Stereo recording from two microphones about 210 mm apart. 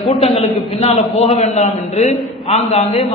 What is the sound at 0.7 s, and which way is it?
A man's voice, 30° left (ahead or behind).